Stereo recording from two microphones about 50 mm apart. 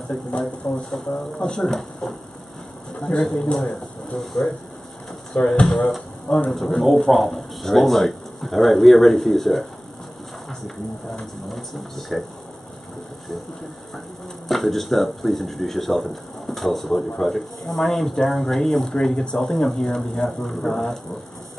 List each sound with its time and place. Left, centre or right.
0.3 s speech: centre
3.0 s speech: centre
4.2 s speech: centre
5.3 s speech: centre
6.5 s speech: centre
11.4 s speech: centre
14.5 s speech: centre